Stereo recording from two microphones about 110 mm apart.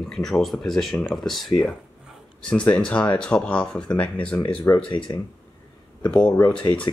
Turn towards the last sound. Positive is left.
turn(degrees=50)  # may be behind; listen again after turning